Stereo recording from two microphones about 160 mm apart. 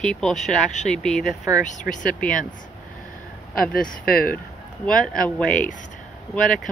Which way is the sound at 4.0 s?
70° left (ahead or behind).